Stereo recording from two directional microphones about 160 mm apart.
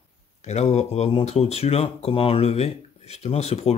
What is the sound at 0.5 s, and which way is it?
Speech, 45° left (ahead or behind).